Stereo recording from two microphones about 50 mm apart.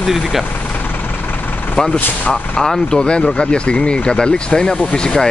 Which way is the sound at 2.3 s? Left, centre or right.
Centre.